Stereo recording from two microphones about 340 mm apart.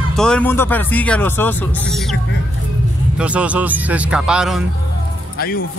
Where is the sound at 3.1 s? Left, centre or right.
Centre.